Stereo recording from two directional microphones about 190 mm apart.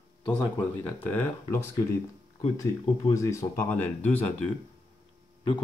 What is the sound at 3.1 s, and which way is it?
Speech, 15° left (ahead or behind).